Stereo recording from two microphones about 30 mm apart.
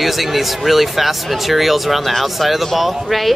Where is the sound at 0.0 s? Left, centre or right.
Centre.